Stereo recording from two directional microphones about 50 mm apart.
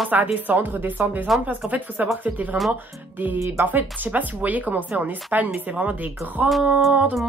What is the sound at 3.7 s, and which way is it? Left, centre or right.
Speech, right.